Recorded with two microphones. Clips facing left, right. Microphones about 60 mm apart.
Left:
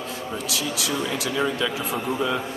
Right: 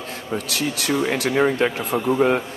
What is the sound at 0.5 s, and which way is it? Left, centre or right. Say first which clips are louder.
Speech: right 4 dB; right.